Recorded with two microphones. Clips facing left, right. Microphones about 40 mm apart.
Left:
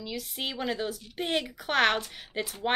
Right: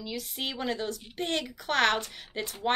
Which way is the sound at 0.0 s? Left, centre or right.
Centre.